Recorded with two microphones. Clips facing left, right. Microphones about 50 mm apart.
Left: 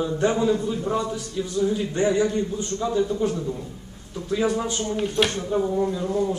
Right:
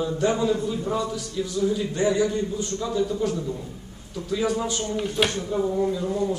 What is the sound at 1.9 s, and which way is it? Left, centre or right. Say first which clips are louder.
A man's voice: left 3 dB; left.